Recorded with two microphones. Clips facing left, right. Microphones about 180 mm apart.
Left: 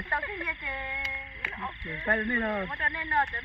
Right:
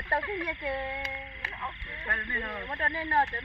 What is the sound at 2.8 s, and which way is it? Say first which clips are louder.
Speech: right 2 dB; 35° right (ahead or behind).